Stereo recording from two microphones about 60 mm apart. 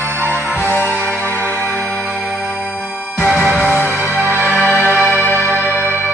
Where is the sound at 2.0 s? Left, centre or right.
Centre.